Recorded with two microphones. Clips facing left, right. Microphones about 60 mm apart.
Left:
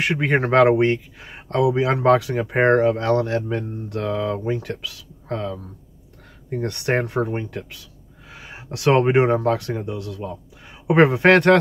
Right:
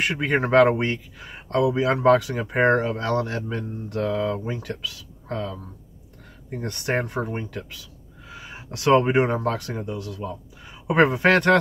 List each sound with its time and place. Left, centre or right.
0.0 s speech: left
8.3 s a sound: left
9.3 s speech: left